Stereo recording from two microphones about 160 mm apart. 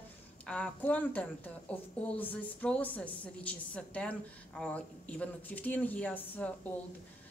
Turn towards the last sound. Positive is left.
turn(degrees=10)  # may be behind; listen again after turning